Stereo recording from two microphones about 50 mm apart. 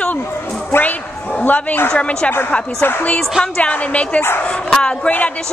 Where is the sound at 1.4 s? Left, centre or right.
Left.